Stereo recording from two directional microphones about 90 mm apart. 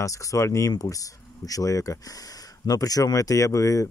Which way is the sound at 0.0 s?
40° left (ahead or behind).